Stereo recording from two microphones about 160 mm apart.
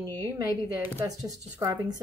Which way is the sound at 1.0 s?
20° right (ahead or behind).